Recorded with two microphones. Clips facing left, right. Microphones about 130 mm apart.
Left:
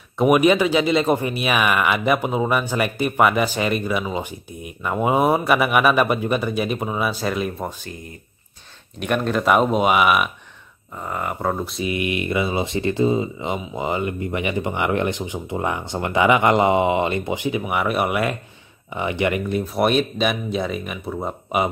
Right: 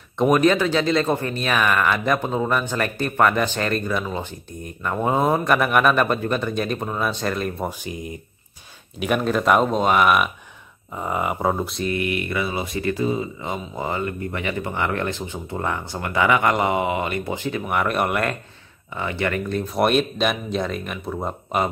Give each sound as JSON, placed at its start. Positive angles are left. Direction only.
{"t": 0.2, "sound": "speech", "side_deg": 10}
{"t": 7.8, "sound": "speech", "side_deg": -15}
{"t": 9.0, "sound": "speech", "side_deg": 0}
{"t": 11.0, "sound": "speech", "side_deg": -15}
{"t": 11.5, "sound": "speech", "side_deg": 0}
{"t": 11.9, "sound": "speech", "side_deg": 20}
{"t": 18.9, "sound": "speech", "side_deg": 15}
{"t": 19.7, "sound": "speech", "side_deg": 0}